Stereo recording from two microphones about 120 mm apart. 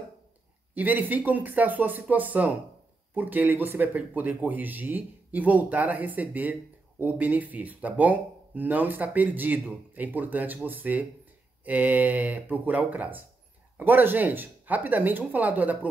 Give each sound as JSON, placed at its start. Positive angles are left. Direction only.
{"t": 0.7, "sound": "speech", "side_deg": -15}